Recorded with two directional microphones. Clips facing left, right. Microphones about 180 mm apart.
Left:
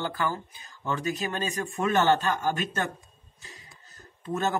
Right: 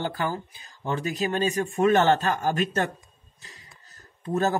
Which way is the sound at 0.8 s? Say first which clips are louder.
Right 2 dB; 35° right (ahead or behind).